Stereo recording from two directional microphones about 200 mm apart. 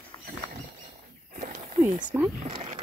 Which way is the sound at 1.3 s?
45° right (ahead or behind).